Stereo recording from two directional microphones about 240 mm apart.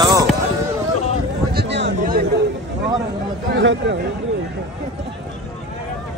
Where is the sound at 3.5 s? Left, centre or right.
Right.